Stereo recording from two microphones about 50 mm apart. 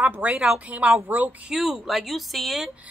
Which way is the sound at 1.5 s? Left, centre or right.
Centre.